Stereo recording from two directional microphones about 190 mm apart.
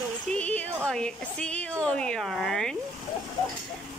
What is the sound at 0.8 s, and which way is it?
A woman's voice, 5° left (ahead or behind).